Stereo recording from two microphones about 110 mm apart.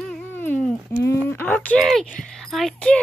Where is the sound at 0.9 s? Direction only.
25° left (ahead or behind).